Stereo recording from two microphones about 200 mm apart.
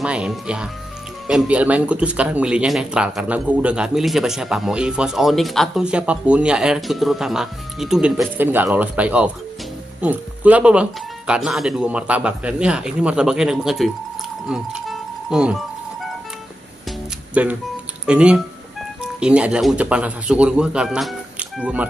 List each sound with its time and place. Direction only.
0.0 s speech: 5° right (ahead or behind)
14.5 s music: 5° right (ahead or behind)
17.3 s speech: 5° right (ahead or behind)